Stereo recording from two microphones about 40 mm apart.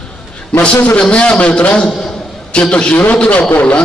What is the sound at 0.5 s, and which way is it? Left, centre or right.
A man's voice, left.